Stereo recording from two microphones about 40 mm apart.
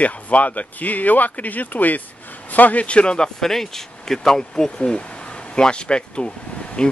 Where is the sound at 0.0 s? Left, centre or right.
Left.